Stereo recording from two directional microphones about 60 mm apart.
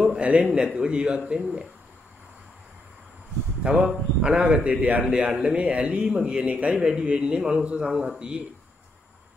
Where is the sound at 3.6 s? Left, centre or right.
Centre.